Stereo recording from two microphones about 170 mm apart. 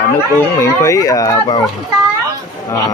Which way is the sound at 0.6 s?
20° left (ahead or behind).